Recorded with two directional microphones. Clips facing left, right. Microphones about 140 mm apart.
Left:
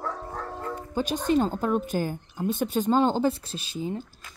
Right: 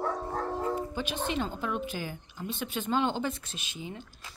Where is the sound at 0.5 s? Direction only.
15° right (ahead or behind).